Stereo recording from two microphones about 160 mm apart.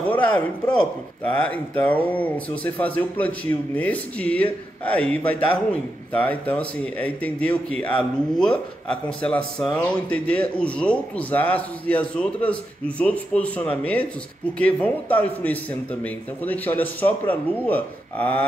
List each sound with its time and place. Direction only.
0.1 s a man's voice: 10° left (ahead or behind)